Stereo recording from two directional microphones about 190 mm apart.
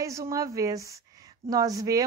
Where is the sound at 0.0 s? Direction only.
15° right (ahead or behind).